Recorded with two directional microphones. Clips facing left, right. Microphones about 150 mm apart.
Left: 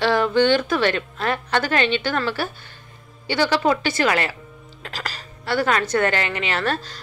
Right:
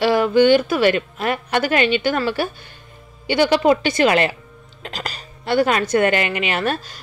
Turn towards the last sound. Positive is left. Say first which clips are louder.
# right 2 dB
turn(degrees=-15)  # may be behind; listen again after turning